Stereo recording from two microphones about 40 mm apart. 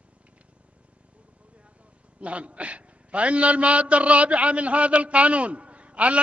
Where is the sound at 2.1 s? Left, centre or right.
Right.